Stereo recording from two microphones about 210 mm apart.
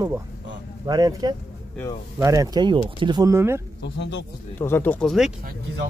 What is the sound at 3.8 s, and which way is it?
Speech, 55° left (ahead or behind).